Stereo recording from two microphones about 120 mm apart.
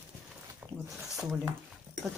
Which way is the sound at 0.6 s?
5° right (ahead or behind).